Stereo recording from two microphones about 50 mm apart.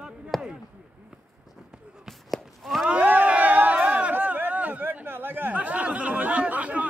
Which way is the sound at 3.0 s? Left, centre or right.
Right.